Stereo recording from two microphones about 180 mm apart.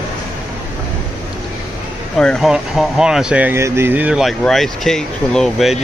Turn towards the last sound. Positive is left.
turn(degrees=0)  # may be behind; listen again after turning